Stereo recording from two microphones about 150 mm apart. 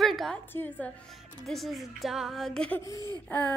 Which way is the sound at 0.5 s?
15° left (ahead or behind).